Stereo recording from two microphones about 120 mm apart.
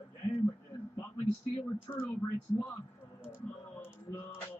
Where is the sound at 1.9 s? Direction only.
30° left (ahead or behind).